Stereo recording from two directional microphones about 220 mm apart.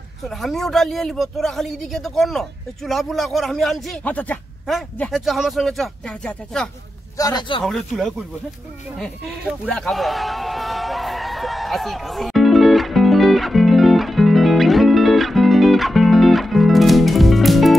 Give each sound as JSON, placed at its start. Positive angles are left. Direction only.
{"t": 0.3, "sound": "speech", "side_deg": 0}
{"t": 7.2, "sound": "a man's voice", "side_deg": 20}
{"t": 7.6, "sound": "speech", "side_deg": 0}
{"t": 8.9, "sound": "a sound", "side_deg": 0}